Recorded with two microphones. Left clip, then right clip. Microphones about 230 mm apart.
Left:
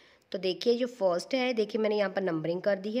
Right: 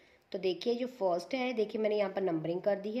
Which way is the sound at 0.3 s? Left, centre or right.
Left.